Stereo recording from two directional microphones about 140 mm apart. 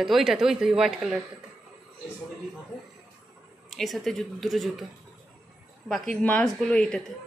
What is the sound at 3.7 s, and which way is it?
A woman's voice, centre (ahead or behind).